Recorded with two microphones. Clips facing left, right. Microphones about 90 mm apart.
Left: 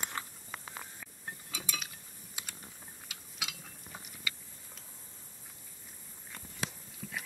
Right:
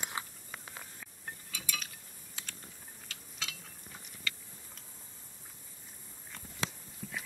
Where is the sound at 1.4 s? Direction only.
20° left (ahead or behind).